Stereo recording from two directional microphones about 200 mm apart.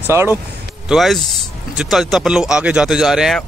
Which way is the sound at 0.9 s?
Centre (ahead or behind).